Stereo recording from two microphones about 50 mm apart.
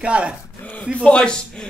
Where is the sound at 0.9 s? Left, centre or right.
Centre.